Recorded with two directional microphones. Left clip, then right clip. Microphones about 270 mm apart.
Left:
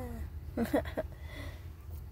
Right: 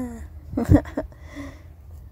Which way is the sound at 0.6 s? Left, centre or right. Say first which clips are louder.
Right 11 dB; centre.